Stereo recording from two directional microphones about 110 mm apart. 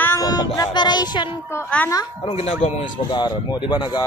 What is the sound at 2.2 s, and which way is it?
Speech, 70° left (ahead or behind).